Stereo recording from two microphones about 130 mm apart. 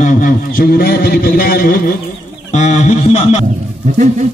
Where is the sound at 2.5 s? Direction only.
60° left (ahead or behind).